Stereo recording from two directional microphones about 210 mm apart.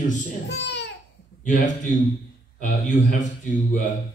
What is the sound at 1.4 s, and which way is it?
A man's voice, 40° left (ahead or behind).